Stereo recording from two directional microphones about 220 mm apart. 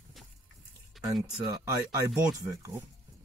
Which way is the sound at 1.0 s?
Centre (ahead or behind).